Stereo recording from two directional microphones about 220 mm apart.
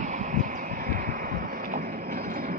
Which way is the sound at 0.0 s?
35° right (ahead or behind).